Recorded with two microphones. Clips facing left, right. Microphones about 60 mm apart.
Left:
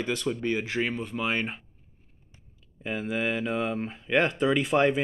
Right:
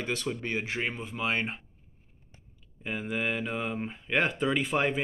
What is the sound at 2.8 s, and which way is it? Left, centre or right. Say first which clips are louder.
Speech: left 3 dB; centre.